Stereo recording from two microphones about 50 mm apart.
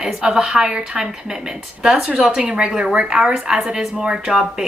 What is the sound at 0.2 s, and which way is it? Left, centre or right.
Speech, centre.